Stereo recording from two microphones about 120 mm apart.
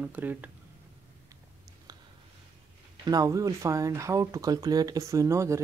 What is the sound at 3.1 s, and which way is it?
Speech, 30° right (ahead or behind).